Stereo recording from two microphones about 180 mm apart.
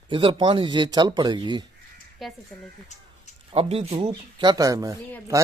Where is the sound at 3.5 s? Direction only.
35° right (ahead or behind).